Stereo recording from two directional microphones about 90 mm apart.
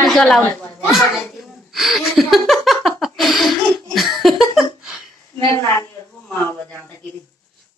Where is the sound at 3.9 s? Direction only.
Centre (ahead or behind).